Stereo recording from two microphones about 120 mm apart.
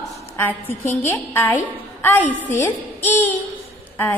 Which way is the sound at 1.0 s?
15° left (ahead or behind).